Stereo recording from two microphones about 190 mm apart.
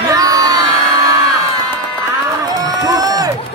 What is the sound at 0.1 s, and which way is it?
Crowd, 20° right (ahead or behind).